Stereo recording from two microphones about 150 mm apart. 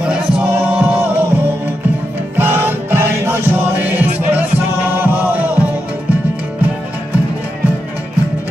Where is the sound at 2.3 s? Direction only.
15° right (ahead or behind).